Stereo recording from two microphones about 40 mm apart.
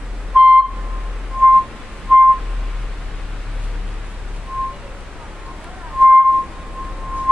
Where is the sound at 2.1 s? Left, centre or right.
Right.